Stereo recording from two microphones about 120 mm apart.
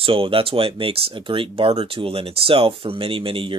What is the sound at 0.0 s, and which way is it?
Speech, 50° right (ahead or behind).